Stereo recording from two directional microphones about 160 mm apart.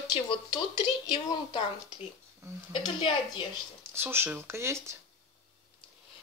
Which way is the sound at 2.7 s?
30° left (ahead or behind).